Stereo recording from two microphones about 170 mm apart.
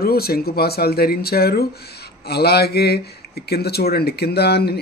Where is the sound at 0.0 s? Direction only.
65° left (ahead or behind).